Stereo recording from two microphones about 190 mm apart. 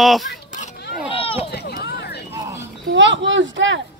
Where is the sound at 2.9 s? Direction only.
75° right (ahead or behind).